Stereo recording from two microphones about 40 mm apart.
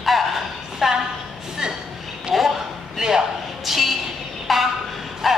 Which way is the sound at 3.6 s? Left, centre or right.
Centre.